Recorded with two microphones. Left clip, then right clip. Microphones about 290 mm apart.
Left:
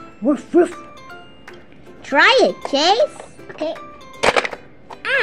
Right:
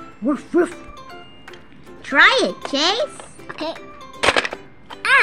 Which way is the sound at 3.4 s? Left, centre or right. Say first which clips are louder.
Left 3 dB; right.